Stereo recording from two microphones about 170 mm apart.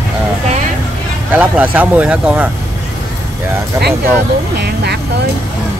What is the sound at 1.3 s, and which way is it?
Speech, 10° right (ahead or behind).